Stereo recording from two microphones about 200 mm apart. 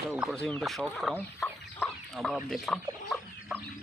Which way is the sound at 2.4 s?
Centre (ahead or behind).